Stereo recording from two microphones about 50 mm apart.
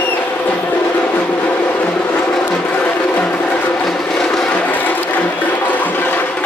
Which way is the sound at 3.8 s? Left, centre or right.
Centre.